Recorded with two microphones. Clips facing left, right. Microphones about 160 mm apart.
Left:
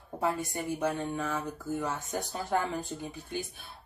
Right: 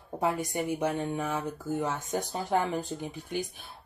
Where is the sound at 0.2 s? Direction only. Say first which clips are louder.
Right 2 dB; 15° right (ahead or behind).